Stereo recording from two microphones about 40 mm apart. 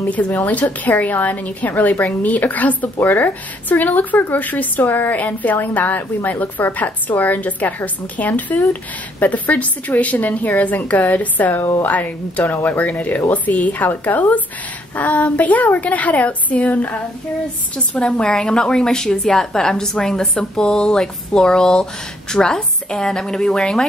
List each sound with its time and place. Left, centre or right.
0.1 s a woman's voice: left
18.2 s a woman's voice: left